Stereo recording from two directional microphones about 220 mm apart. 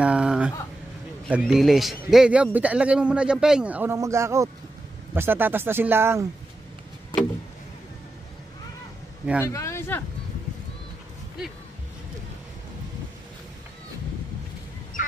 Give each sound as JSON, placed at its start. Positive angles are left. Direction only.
{"t": 0.0, "sound": "a sound", "side_deg": -5}
{"t": 1.4, "sound": "a man's voice", "side_deg": 0}
{"t": 9.4, "sound": "speech", "side_deg": 15}
{"t": 15.0, "sound": "goose", "side_deg": 40}